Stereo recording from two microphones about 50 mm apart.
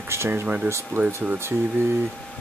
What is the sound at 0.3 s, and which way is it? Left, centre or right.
Speech, right.